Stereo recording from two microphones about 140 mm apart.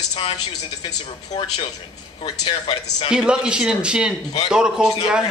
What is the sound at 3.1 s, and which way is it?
A man's voice, 5° right (ahead or behind).